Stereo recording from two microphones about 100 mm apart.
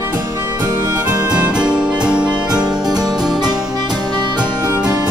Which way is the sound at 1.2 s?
10° right (ahead or behind).